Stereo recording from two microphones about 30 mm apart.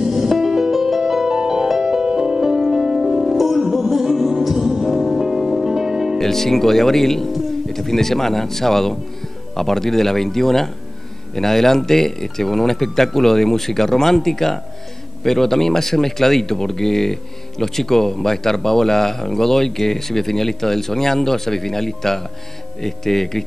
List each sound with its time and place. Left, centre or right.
0.1 s music: centre
1.3 s music: right
6.1 s speech: centre